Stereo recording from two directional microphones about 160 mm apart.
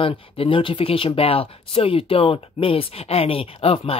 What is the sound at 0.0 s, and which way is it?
Speech, 35° left (ahead or behind).